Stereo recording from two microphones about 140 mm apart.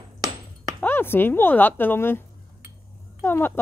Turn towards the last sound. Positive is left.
turn(degrees=15)  # may be behind; listen again after turning